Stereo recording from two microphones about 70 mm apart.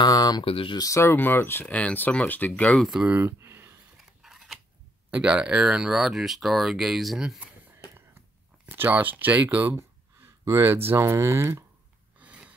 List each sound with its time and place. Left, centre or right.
0.0 s speech: left
1.1 s speech: left
1.7 s speech: centre
3.3 s a sound: right
4.2 s scissors: centre
5.1 s speech: centre
8.6 s speech: right
9.8 s a sound: right
11.0 s speech: right
12.2 s snort: centre